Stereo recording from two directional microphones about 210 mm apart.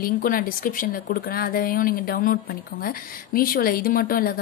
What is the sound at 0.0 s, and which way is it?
A woman's voice, 45° left (ahead or behind).